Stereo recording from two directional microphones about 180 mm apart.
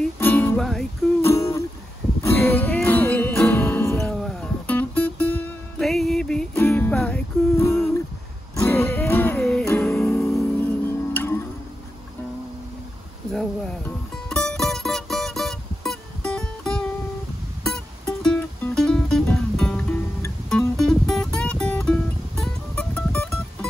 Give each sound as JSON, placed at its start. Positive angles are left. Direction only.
{"t": 0.0, "sound": "music", "side_deg": 10}
{"t": 1.2, "sound": "music", "side_deg": 15}
{"t": 11.1, "sound": "music", "side_deg": 15}
{"t": 13.3, "sound": "music", "side_deg": 5}